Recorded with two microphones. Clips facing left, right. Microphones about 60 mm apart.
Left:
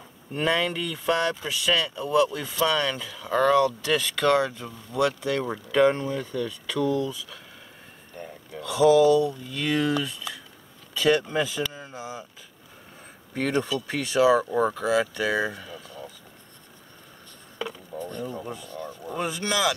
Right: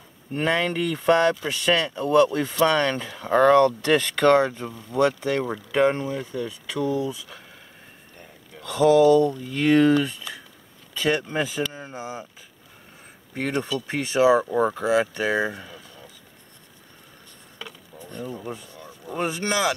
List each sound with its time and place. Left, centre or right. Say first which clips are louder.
0.3 s speech: right 1 dB; right
5.7 s speech: left 1 dB; right
8.6 s speech: right 1 dB; right
11.0 s speech: left 1 dB; right
13.3 s speech: left 1 dB; right
18.1 s speech: right 3 dB; centre
19.1 s speech: right 2 dB; right